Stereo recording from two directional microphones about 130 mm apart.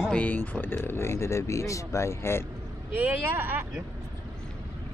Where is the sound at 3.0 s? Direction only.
10° right (ahead or behind).